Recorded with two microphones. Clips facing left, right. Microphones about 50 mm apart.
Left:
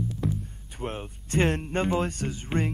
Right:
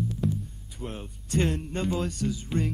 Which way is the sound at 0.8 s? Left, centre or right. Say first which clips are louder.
Left 4 dB; left.